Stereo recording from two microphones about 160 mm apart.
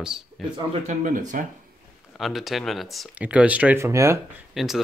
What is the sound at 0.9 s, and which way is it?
Speech, 50° right (ahead or behind).